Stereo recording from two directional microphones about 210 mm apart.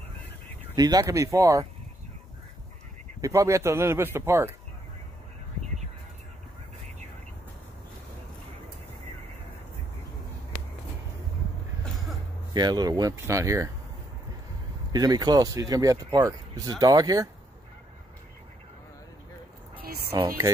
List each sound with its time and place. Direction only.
0.7 s speech: 20° right (ahead or behind)
3.2 s speech: 15° right (ahead or behind)
12.5 s speech: 20° right (ahead or behind)
14.9 s speech: 20° right (ahead or behind)
19.8 s a sound: 45° right (ahead or behind)